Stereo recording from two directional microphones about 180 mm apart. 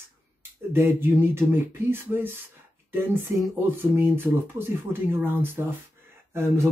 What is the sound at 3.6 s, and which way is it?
Speech, 10° right (ahead or behind).